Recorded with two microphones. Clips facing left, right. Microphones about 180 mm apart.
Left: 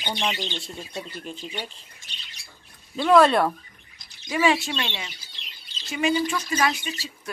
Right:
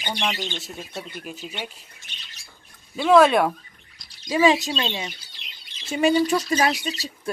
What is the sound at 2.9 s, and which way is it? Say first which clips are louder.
Speech: right 2 dB; 5° right (ahead or behind).